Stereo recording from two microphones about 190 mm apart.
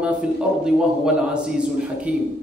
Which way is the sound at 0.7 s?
5° right (ahead or behind).